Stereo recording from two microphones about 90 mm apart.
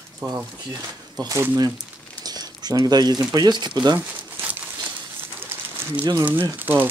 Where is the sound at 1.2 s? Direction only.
40° right (ahead or behind).